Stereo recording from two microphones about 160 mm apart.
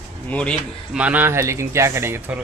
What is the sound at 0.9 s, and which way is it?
Speech, 10° right (ahead or behind).